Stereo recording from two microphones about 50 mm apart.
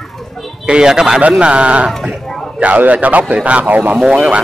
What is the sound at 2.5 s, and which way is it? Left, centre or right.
A man's voice, right.